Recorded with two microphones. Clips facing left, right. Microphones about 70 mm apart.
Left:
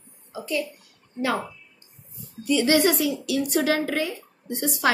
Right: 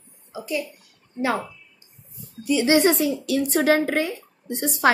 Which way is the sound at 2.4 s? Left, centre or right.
Centre.